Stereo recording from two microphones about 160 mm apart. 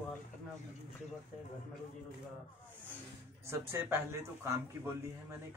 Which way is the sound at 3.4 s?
15° right (ahead or behind).